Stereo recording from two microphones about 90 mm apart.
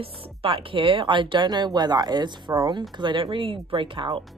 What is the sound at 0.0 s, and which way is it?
Speech, 90° right.